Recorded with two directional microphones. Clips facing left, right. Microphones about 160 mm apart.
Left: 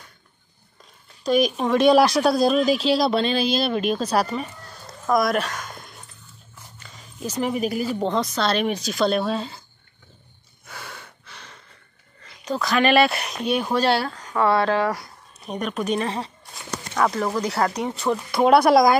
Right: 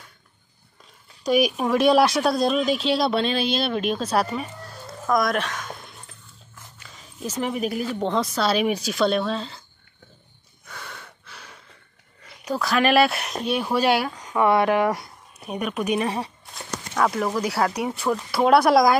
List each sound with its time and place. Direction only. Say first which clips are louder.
1.2 s speech: even; 10° right (ahead or behind)
5.0 s a sound: left 2 dB; 5° left (ahead or behind)
6.8 s a woman's voice: left 1 dB; centre (ahead or behind)
10.7 s snort: left 1 dB; 5° left (ahead or behind)
12.2 s speech: even; 5° right (ahead or behind)
15.4 s speech: even; 5° right (ahead or behind)